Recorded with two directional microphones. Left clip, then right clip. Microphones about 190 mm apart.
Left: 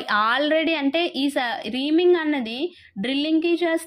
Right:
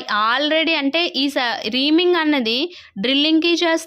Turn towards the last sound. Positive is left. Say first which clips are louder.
# right 4 dB
turn(degrees=-25)  # may be behind; listen again after turning